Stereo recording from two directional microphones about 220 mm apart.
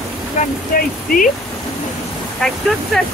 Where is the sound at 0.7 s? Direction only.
40° left (ahead or behind).